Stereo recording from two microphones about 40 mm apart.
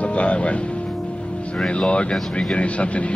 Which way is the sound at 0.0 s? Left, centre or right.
Left.